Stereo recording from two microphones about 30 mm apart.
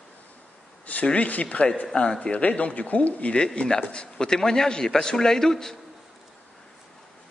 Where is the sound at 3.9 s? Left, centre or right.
Left.